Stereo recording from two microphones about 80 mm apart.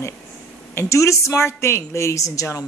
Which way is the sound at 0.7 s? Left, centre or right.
Left.